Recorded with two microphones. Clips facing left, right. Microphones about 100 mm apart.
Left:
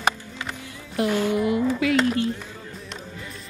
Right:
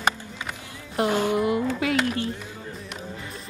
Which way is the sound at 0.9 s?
30° right (ahead or behind).